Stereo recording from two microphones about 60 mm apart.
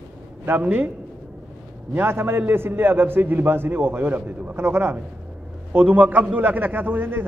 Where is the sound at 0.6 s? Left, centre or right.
Right.